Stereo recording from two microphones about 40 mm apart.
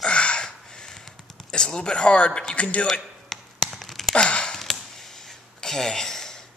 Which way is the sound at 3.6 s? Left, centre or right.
Centre.